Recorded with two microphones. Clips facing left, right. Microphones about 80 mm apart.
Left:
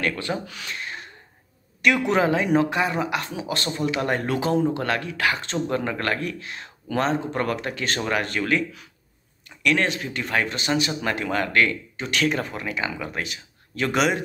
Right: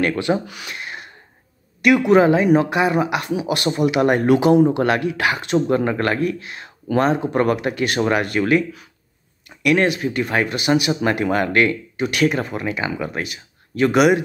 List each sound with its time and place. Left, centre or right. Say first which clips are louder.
0.0 s speech: right 7 dB; right
0.5 s a sound: right 2 dB; centre
1.8 s speech: right 7 dB; centre